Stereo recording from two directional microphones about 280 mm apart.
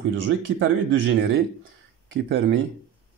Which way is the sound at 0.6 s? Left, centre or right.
Right.